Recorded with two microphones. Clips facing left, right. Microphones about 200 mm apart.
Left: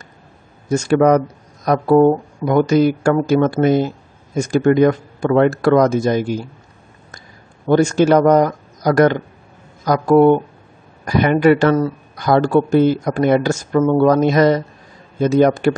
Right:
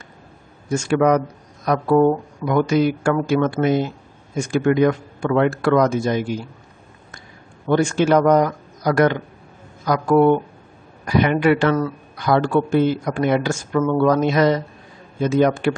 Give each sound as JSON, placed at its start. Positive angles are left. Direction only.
{"t": 0.7, "sound": "speech", "side_deg": 40}
{"t": 7.6, "sound": "speech", "side_deg": 40}